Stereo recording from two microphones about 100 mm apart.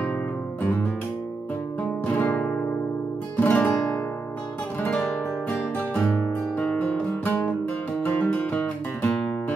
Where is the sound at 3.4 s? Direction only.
15° left (ahead or behind).